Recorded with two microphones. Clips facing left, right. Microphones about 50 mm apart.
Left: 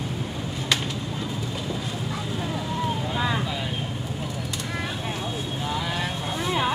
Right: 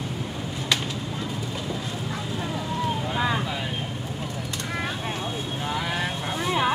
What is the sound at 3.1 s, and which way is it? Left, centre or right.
Vehicle, centre.